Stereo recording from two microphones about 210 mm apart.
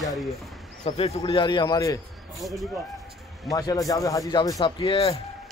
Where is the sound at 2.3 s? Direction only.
Centre (ahead or behind).